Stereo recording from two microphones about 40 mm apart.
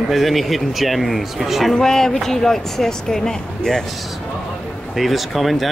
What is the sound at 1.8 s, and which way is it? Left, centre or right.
Speech, centre.